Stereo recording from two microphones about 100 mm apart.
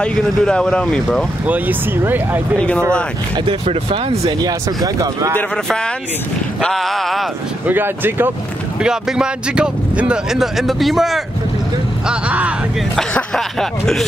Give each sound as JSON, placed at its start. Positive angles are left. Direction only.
{"t": 0.0, "sound": "speech", "side_deg": 5}
{"t": 1.4, "sound": "speech", "side_deg": -15}
{"t": 2.5, "sound": "speech", "side_deg": 10}
{"t": 3.6, "sound": "speech", "side_deg": -80}
{"t": 4.4, "sound": "speech", "side_deg": -40}
{"t": 6.6, "sound": "speech", "side_deg": 0}
{"t": 7.6, "sound": "speech", "side_deg": -20}
{"t": 8.8, "sound": "speech", "side_deg": -10}
{"t": 12.1, "sound": "speech", "side_deg": -15}
{"t": 12.9, "sound": "speech", "side_deg": 5}